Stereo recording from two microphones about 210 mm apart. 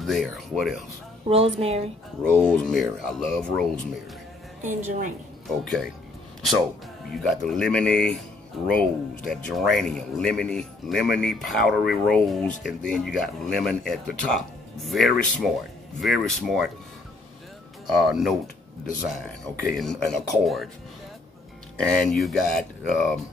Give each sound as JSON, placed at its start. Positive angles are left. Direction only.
{"t": 0.0, "sound": "speech", "side_deg": 0}
{"t": 1.2, "sound": "speech", "side_deg": -30}
{"t": 2.3, "sound": "speech", "side_deg": 5}
{"t": 4.6, "sound": "a woman's voice", "side_deg": -35}
{"t": 7.2, "sound": "speech", "side_deg": 0}
{"t": 17.8, "sound": "speech", "side_deg": 0}
{"t": 21.7, "sound": "speech", "side_deg": 0}